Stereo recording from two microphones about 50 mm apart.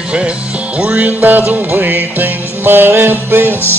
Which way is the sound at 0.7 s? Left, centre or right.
Right.